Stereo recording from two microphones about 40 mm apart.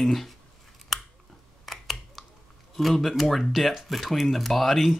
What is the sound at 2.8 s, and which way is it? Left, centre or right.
Speech, centre.